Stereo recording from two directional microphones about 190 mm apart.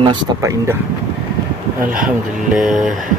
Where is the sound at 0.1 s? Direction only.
15° right (ahead or behind).